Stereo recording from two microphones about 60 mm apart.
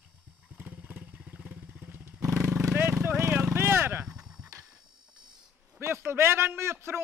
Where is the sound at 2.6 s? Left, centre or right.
Right.